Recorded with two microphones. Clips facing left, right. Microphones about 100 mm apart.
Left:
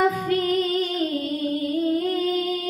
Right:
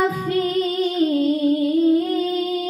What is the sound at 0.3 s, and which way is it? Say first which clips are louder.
Music: right 1 dB; 25° right (ahead or behind).